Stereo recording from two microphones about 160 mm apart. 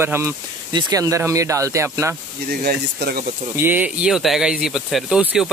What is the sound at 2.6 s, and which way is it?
Speech, 75° right (ahead or behind).